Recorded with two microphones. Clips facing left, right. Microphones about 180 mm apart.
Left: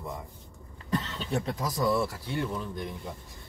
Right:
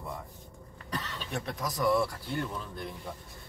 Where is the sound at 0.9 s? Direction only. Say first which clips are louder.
Left 6 dB; 25° left (ahead or behind).